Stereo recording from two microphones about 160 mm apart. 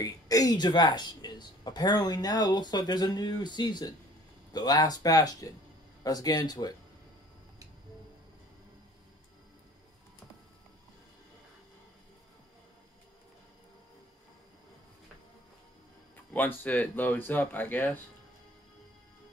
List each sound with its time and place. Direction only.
0.0 s speech: 20° left (ahead or behind)
16.3 s speech: 10° left (ahead or behind)